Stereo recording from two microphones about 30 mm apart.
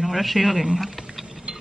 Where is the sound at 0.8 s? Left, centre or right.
Centre.